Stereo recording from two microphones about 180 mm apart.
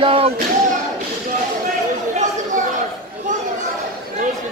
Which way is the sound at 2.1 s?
45° right (ahead or behind).